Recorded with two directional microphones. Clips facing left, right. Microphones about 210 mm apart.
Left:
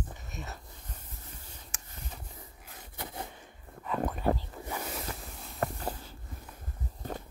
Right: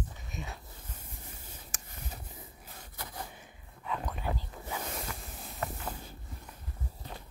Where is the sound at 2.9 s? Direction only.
20° left (ahead or behind).